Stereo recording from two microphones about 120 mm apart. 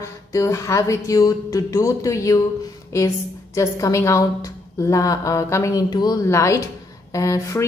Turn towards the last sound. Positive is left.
turn(degrees=25)  # may be behind; listen again after turning